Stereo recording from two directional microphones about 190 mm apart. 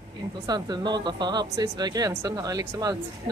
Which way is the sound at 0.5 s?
20° right (ahead or behind).